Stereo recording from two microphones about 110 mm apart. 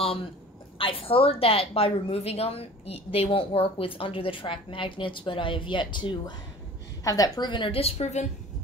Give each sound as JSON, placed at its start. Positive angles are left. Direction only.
{"t": 0.7, "sound": "a woman's voice", "side_deg": 55}
{"t": 7.1, "sound": "a woman's voice", "side_deg": 35}